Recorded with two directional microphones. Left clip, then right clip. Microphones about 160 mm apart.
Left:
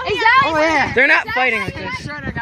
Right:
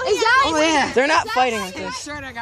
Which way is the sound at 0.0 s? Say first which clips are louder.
Left 3 dB; 35° left (ahead or behind).